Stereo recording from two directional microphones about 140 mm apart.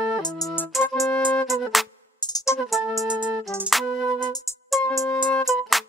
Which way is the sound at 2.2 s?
30° left (ahead or behind).